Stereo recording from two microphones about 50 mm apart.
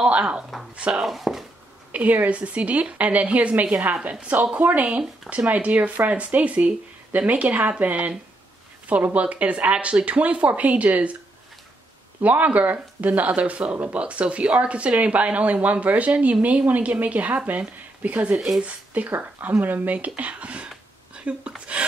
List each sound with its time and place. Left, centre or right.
0.1 s speech: right
1.0 s speech: centre
1.9 s speech: right
4.6 s speech: right
12.2 s speech: right